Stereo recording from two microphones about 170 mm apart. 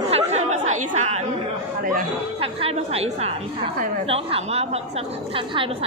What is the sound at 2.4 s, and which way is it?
A woman's voice, 35° right (ahead or behind).